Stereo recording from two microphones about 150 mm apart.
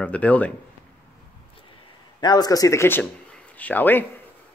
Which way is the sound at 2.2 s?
25° left (ahead or behind).